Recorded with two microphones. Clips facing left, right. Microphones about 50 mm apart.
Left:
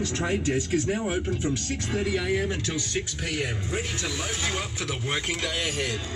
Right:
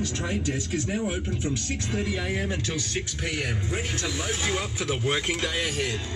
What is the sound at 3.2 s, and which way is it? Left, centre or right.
Speech, right.